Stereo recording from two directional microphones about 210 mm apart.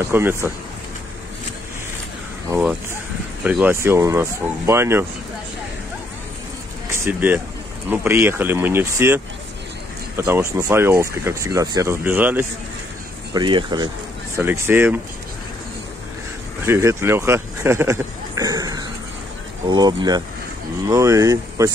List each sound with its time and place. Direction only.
0.0 s speech: 10° right (ahead or behind)
2.5 s speech: 10° right (ahead or behind)
6.9 s speech: 10° right (ahead or behind)
13.3 s speech: 20° right (ahead or behind)
14.3 s speech: 10° right (ahead or behind)
16.6 s speech: 10° right (ahead or behind)